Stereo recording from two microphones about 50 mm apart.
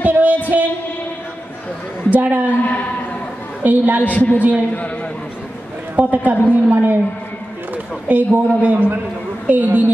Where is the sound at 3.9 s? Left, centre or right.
Left.